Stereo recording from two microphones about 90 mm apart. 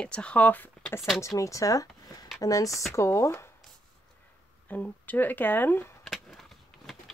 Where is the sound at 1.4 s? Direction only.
35° left (ahead or behind).